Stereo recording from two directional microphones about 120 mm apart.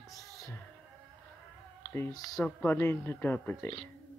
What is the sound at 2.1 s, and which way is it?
Speech, 30° left (ahead or behind).